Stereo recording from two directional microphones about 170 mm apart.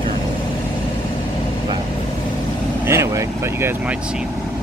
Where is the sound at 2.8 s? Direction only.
15° right (ahead or behind).